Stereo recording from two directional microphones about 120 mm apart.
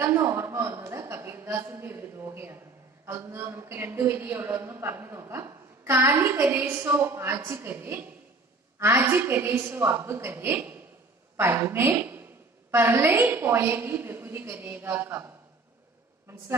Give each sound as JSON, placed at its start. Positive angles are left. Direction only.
{"t": 0.0, "sound": "a woman's voice", "side_deg": -20}